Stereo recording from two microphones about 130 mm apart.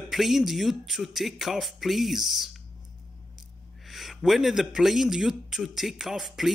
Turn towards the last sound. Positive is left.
turn(degrees=0)  # may be behind; listen again after turning